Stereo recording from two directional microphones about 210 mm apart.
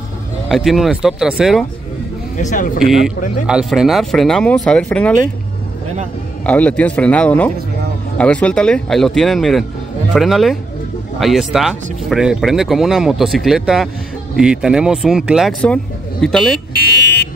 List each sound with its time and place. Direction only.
0.5 s speech: centre (ahead or behind)
2.3 s speech: 40° left (ahead or behind)
2.8 s speech: centre (ahead or behind)
6.4 s speech: 5° left (ahead or behind)